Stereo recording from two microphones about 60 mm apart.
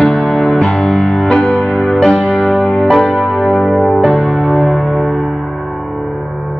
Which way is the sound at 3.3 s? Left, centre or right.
Centre.